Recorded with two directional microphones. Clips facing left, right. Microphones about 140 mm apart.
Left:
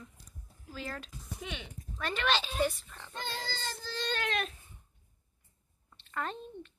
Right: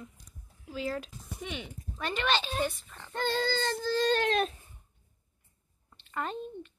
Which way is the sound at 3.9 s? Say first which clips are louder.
Right 8 dB; 40° right (ahead or behind).